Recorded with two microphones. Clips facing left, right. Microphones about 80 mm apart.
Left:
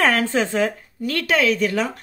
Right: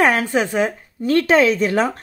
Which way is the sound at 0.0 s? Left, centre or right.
Centre.